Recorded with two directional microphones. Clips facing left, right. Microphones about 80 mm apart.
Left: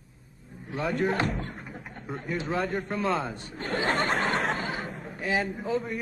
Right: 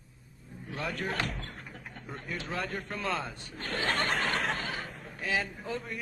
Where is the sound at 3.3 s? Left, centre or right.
Left.